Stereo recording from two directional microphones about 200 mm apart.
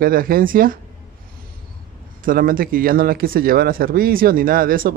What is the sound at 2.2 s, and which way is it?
Speech, 45° right (ahead or behind).